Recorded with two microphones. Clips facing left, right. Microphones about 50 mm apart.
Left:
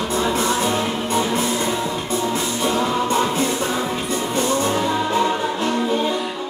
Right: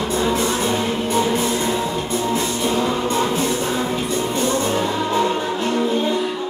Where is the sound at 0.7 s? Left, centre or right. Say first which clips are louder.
Right 1 dB; centre.